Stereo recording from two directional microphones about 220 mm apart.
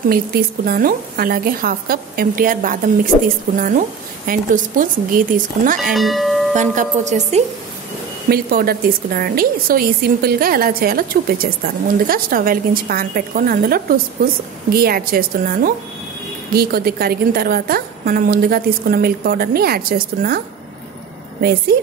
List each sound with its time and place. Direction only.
0.1 s a woman's voice: 45° right (ahead or behind)
5.9 s speech: centre (ahead or behind)
6.5 s a woman's voice: 35° right (ahead or behind)
8.3 s a woman's voice: 45° right (ahead or behind)